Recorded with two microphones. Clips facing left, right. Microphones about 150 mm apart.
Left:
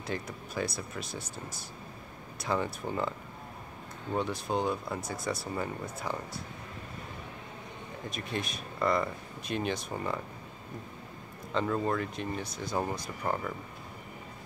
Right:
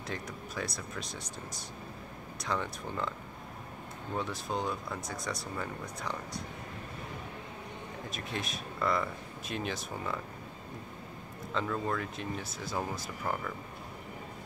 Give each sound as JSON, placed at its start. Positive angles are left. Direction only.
{"t": 0.0, "sound": "speech", "side_deg": 0}
{"t": 4.2, "sound": "speech", "side_deg": 0}
{"t": 8.1, "sound": "speech", "side_deg": 0}
{"t": 11.8, "sound": "speech", "side_deg": 0}
{"t": 13.2, "sound": "speech", "side_deg": 15}